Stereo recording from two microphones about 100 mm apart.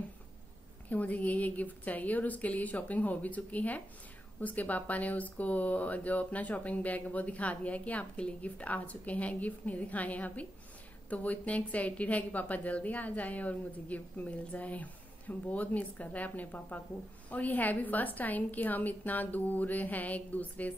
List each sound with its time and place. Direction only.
0.8 s speech: 15° left (ahead or behind)